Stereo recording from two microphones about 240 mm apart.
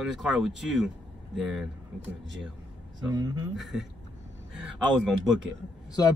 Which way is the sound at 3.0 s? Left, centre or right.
Centre.